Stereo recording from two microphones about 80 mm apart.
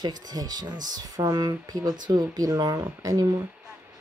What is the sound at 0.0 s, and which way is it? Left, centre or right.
Speech, right.